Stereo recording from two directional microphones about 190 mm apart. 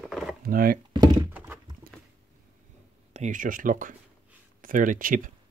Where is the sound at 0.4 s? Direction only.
50° right (ahead or behind).